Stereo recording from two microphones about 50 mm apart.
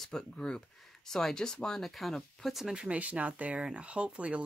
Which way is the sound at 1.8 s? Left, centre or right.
Centre.